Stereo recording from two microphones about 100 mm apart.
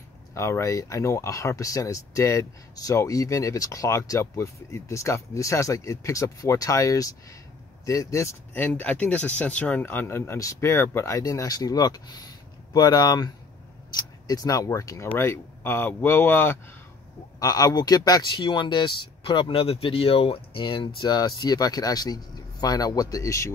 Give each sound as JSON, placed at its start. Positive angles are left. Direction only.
{"t": 0.3, "sound": "speech", "side_deg": 30}
{"t": 17.4, "sound": "speech", "side_deg": 35}